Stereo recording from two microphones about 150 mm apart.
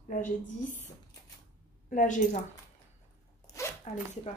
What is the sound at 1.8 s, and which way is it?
Speech, 60° left (ahead or behind).